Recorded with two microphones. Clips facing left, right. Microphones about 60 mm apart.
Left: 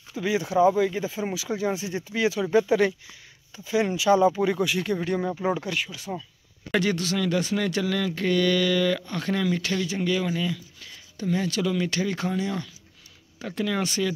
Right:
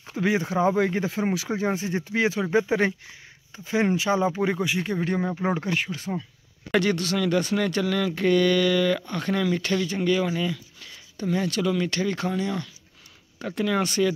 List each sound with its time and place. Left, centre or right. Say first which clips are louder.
0.0 s speech: right 2 dB; right
6.7 s speech: right 2 dB; centre
13.4 s speech: right 2 dB; centre